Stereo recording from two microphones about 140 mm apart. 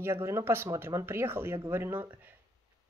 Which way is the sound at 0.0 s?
15° right (ahead or behind).